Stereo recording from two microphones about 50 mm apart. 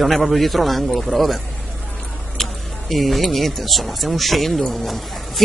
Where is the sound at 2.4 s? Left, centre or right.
Centre.